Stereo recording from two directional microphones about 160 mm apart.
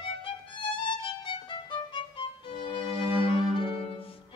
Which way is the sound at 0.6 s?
30° left (ahead or behind).